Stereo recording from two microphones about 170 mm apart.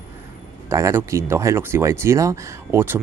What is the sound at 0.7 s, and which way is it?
Speech, 15° right (ahead or behind).